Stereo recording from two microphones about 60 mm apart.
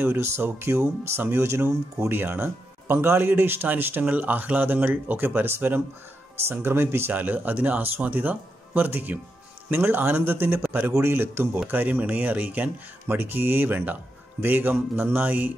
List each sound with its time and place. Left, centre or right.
0.0 s speech: right
11.7 s speech: right